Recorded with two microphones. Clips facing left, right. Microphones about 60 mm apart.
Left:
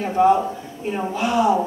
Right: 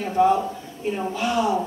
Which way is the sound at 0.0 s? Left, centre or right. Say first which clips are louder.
Left 3 dB; left.